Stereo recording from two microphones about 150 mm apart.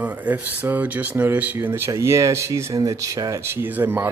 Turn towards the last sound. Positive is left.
turn(degrees=-15)  # may be behind; listen again after turning